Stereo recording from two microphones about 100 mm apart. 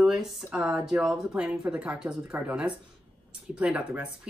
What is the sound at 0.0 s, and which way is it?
Speech, 5° right (ahead or behind).